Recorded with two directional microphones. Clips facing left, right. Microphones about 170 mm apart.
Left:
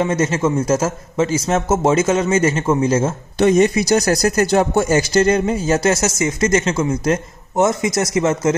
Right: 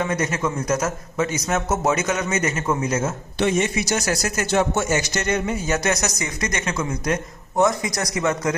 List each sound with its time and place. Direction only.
0.0 s speech: 25° left (ahead or behind)
3.3 s speech: 40° left (ahead or behind)